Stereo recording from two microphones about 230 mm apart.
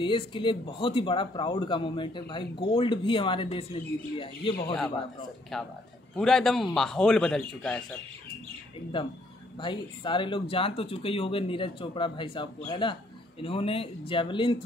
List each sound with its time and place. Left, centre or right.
0.0 s speech: left
5.5 s speech: centre
9.0 s speech: left